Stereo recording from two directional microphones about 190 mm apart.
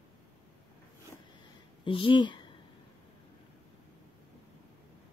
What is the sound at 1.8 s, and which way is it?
Speech, 25° left (ahead or behind).